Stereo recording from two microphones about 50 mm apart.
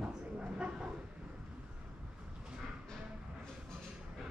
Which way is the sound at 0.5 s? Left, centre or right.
Centre.